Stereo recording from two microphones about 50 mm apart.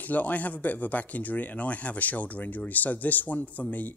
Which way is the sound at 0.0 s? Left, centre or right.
Left.